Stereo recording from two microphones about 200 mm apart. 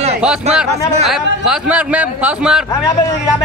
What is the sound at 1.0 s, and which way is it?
A man's voice, centre (ahead or behind).